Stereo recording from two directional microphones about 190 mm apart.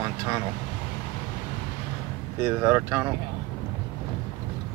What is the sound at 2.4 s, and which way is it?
Speech, 15° right (ahead or behind).